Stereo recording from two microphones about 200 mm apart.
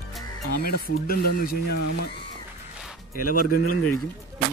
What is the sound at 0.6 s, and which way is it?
Speech, 50° left (ahead or behind).